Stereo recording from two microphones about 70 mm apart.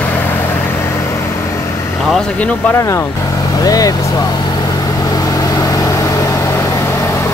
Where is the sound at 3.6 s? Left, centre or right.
Left.